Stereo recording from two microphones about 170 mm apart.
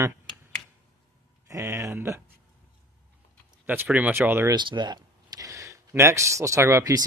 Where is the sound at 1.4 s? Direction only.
15° right (ahead or behind).